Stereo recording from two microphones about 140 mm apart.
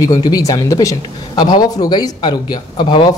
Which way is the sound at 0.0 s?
25° left (ahead or behind).